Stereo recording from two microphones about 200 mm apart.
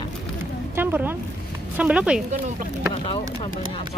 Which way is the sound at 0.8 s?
10° right (ahead or behind).